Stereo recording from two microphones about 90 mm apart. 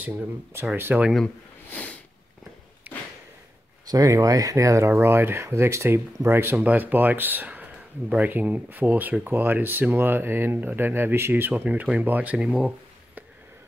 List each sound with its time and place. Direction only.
0.7 s speech: 25° right (ahead or behind)
1.7 s sniff: 15° left (ahead or behind)
2.9 s a sound: 15° right (ahead or behind)
3.8 s speech: 40° right (ahead or behind); by 13.2 s 15° right (ahead or behind)